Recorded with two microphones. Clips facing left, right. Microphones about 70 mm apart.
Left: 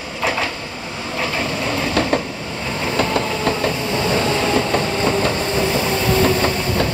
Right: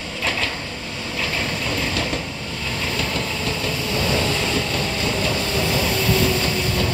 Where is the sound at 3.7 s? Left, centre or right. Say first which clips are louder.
Left 3 dB; left.